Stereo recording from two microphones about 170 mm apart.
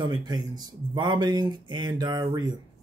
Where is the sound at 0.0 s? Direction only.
25° right (ahead or behind).